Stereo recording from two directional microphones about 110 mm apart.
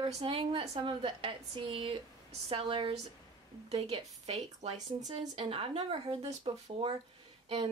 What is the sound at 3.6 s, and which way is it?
A woman's voice, 65° right (ahead or behind).